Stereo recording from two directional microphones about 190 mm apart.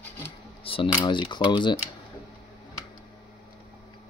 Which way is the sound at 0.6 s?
30° left (ahead or behind).